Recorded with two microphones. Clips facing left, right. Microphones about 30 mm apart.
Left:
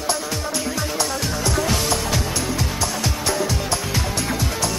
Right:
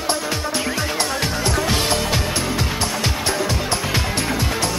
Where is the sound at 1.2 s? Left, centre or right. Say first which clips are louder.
Right 2 dB; right.